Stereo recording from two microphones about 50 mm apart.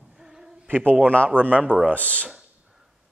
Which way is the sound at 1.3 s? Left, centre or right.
Right.